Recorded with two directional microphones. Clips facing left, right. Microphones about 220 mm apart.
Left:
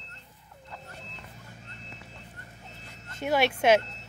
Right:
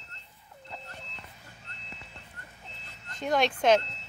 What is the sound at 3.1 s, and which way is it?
Speech, 5° left (ahead or behind).